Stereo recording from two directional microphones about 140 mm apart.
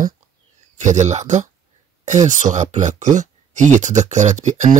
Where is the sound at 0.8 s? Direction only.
60° right (ahead or behind).